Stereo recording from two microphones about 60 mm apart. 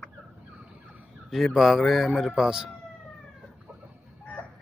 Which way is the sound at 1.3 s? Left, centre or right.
Centre.